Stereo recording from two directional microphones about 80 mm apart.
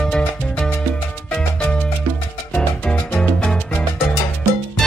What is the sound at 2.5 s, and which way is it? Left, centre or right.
Music, centre.